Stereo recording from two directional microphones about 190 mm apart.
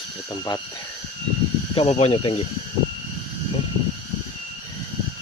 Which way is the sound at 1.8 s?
30° left (ahead or behind).